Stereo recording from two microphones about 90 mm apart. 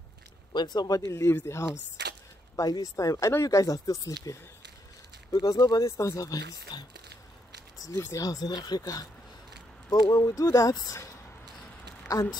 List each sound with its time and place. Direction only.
0.5 s speech: 55° left (ahead or behind); by 1.7 s 30° left (ahead or behind)
2.5 s speech: 40° left (ahead or behind)
8.0 s speech: 35° left (ahead or behind)